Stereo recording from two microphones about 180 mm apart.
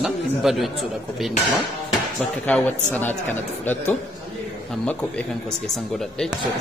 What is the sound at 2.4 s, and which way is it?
Speech, 10° left (ahead or behind).